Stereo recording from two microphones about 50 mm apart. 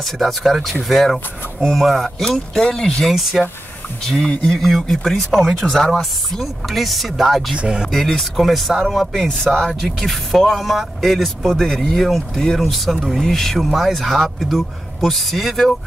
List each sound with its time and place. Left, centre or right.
0.0 s speech: centre
3.2 s speech: centre
4.0 s speech: centre
7.5 s speech: centre
7.9 s speech: centre